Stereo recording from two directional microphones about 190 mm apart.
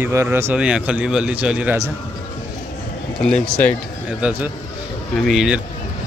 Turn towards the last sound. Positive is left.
turn(degrees=-5)  # may be behind; listen again after turning